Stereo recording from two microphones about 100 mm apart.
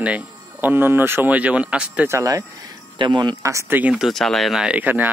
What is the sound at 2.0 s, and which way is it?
Speech, 30° right (ahead or behind).